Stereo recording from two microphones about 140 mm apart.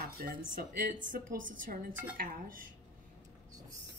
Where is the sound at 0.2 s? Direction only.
90° right; by 2.0 s 75° right (ahead or behind).